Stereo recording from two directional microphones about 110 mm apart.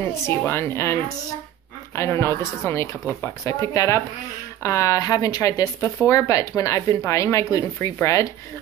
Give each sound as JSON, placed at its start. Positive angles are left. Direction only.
{"t": 0.5, "sound": "a woman's voice", "side_deg": 25}